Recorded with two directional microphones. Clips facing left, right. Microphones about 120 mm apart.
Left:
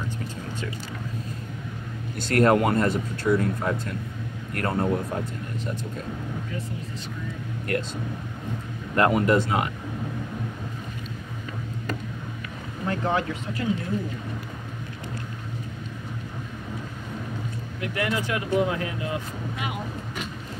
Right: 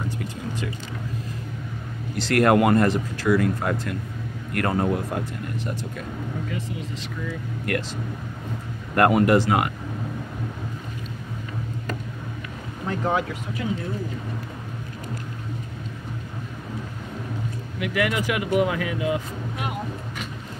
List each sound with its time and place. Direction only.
2.1 s speech: 90° right
7.2 s speech: 75° right (ahead or behind)
8.9 s speech: 65° right (ahead or behind)
12.8 s speech: 5° right (ahead or behind)
17.7 s speech: 80° right